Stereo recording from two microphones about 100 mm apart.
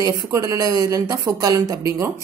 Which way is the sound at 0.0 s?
30° right (ahead or behind).